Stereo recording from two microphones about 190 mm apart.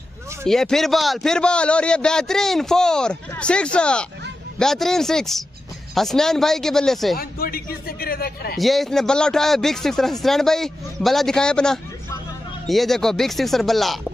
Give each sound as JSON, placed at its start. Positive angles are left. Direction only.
{"t": 0.5, "sound": "a man's voice", "side_deg": 0}
{"t": 7.2, "sound": "a man's voice", "side_deg": 50}
{"t": 8.5, "sound": "a man's voice", "side_deg": 0}